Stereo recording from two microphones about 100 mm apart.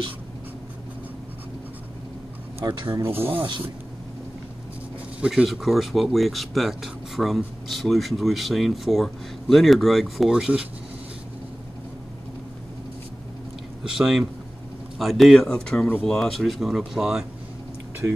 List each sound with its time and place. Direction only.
2.6 s speech: 50° right (ahead or behind)
2.9 s speech: 25° right (ahead or behind)
5.2 s speech: centre (ahead or behind)
13.8 s speech: 5° right (ahead or behind)